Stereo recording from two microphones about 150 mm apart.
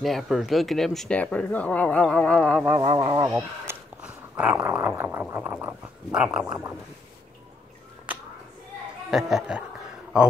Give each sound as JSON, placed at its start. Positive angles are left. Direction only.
{"t": 0.0, "sound": "speech", "side_deg": 0}
{"t": 2.8, "sound": "speech", "side_deg": -40}
{"t": 3.3, "sound": "speech", "side_deg": -10}
{"t": 5.3, "sound": "gargling", "side_deg": -10}
{"t": 9.1, "sound": "a man's voice", "side_deg": -5}